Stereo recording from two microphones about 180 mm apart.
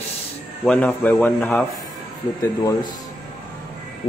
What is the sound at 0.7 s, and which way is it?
Speech, 10° left (ahead or behind).